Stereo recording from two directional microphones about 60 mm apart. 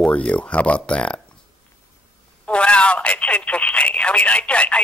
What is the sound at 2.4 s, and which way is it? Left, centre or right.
Speech, centre.